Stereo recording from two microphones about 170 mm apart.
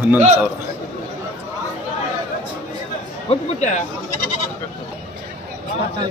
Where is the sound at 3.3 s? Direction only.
45° left (ahead or behind).